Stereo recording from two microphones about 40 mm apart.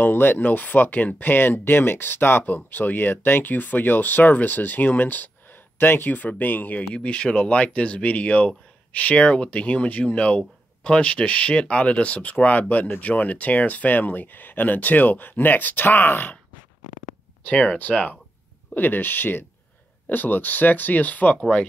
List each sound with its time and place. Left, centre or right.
0.0 s speech: left
0.5 s speech: left
2.5 s speech: left
5.8 s speech: left
6.1 s speech: left
6.9 s speech: left
17.5 s speech: left
18.8 s speech: left